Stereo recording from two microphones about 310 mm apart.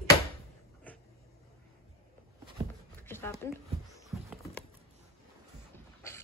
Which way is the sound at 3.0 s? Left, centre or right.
Centre.